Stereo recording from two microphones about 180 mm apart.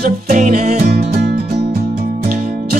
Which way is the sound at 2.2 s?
55° right (ahead or behind).